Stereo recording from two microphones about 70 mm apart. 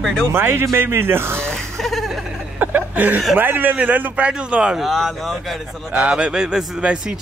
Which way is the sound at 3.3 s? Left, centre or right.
Right.